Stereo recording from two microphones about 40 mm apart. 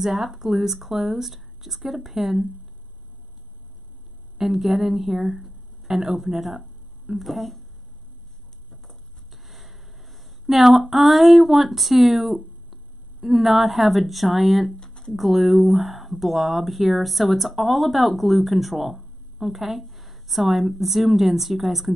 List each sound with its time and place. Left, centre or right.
0.0 s speech: centre
4.4 s speech: centre
9.3 s speech: centre
14.8 s a sound: centre
15.1 s speech: centre